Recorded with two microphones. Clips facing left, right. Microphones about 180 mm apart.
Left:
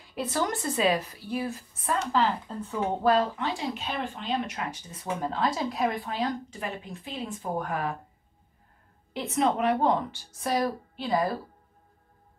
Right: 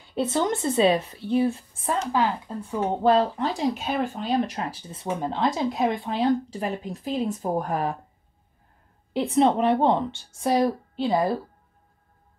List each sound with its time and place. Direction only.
0.1 s a woman's voice: 25° right (ahead or behind)
2.1 s a woman's voice: 10° right (ahead or behind)
3.0 s speech: 30° right (ahead or behind)
9.1 s a woman's voice: 30° right (ahead or behind)